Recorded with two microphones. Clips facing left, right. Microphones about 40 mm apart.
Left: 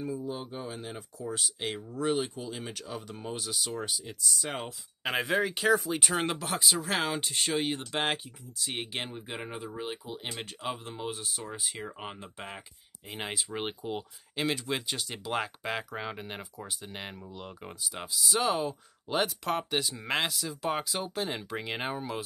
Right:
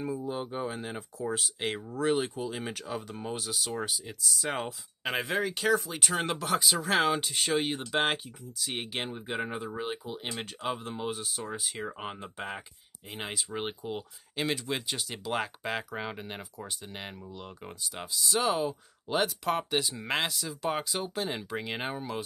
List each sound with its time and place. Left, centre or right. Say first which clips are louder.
0.0 s speech: right 2 dB; right
2.0 s speech: right 2 dB; centre